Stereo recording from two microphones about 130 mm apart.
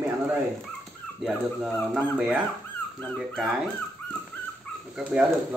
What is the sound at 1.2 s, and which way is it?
Speech, 5° right (ahead or behind).